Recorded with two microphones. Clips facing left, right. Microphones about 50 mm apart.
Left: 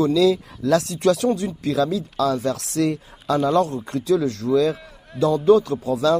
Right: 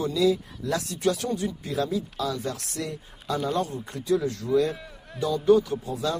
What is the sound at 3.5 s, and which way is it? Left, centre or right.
Speech, left.